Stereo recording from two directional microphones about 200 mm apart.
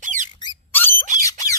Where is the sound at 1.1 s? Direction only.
15° left (ahead or behind).